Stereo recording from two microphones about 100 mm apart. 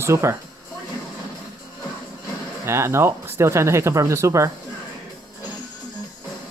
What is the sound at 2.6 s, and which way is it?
Speech, 25° right (ahead or behind).